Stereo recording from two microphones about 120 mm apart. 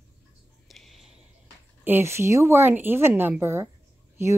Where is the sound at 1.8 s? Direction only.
20° right (ahead or behind).